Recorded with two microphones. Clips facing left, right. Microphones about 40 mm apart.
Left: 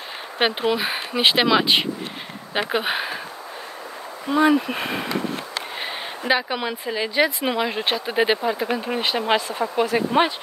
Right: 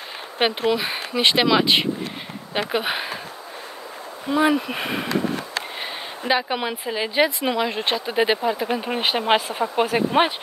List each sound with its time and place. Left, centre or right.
0.4 s speech: centre
4.3 s speech: centre
5.8 s a sound: centre
6.5 s speech: centre
7.2 s speech: centre
8.7 s speech: centre
9.2 s speech: right